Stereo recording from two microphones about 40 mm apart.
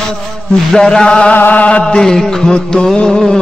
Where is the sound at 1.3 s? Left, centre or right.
Left.